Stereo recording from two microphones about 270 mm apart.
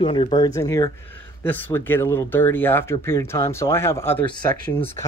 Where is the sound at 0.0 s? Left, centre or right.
Centre.